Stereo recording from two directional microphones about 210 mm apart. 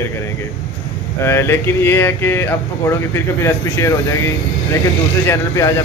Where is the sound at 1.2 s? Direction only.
10° left (ahead or behind).